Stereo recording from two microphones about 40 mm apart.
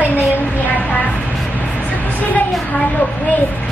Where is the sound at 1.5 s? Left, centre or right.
Left.